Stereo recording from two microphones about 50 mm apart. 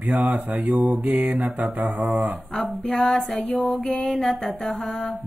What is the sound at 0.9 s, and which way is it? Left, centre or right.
Mantra, centre.